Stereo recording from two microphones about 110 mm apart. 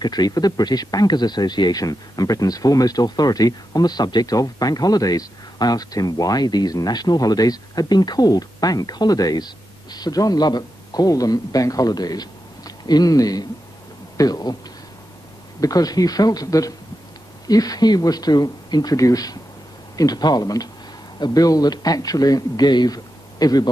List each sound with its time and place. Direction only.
0.0 s speech: 40° left (ahead or behind)
15.6 s speech: 35° left (ahead or behind)